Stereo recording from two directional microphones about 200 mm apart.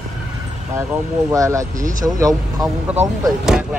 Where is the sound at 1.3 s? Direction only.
15° right (ahead or behind).